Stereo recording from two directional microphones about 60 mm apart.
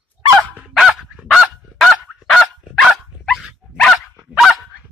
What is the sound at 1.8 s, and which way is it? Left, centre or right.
Dog, centre.